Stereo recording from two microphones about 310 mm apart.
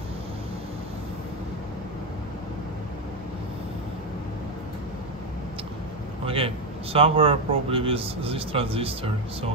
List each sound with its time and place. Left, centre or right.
6.2 s speech: centre